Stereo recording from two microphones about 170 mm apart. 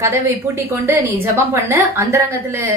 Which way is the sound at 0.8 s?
10° right (ahead or behind).